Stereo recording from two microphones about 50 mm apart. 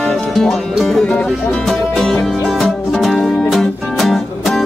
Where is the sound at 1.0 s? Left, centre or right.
Left.